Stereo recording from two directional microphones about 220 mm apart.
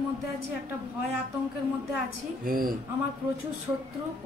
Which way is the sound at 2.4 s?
40° right (ahead or behind).